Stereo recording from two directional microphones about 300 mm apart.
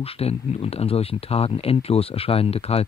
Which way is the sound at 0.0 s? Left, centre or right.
Centre.